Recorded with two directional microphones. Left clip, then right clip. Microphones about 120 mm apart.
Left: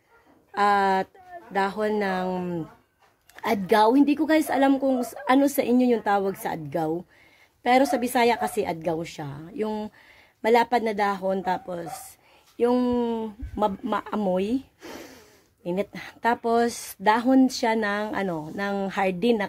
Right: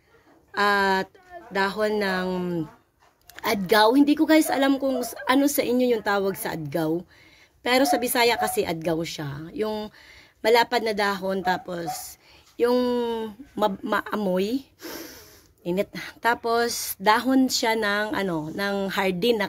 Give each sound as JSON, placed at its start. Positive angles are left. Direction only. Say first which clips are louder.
{"t": 0.6, "sound": "a woman's voice", "louder": "even", "side_deg": 40}